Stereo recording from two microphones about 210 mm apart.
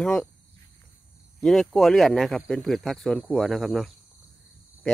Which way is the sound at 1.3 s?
Centre (ahead or behind).